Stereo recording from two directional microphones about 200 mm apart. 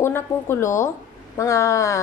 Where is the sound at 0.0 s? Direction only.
15° left (ahead or behind).